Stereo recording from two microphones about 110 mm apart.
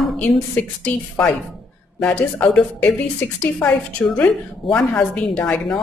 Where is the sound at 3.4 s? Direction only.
20° left (ahead or behind).